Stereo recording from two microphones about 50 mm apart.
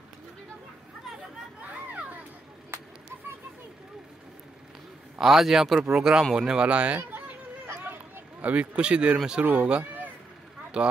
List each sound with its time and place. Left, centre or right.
5.2 s a man's voice: centre; by 7.0 s right
7.0 s a sound: right
8.4 s speech: right
9.4 s speech: right
10.8 s speech: right